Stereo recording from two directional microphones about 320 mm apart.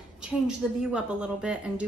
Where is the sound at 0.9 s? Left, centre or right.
Centre.